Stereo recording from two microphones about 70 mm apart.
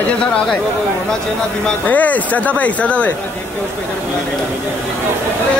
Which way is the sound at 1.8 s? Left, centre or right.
Left.